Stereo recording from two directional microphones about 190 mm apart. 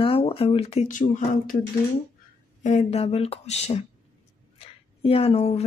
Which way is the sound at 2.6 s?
35° left (ahead or behind).